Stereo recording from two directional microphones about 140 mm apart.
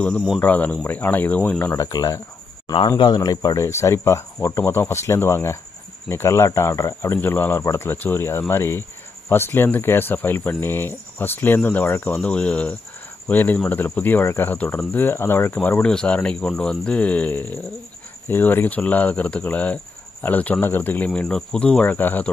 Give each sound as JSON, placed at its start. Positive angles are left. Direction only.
{"t": 0.4, "sound": "speech", "side_deg": 10}
{"t": 1.8, "sound": "speech", "side_deg": 25}